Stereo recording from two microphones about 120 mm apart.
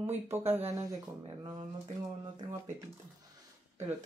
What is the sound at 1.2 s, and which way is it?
Speech, 35° right (ahead or behind).